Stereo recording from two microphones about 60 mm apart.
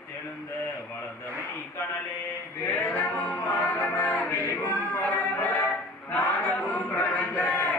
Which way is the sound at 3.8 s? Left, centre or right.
Left.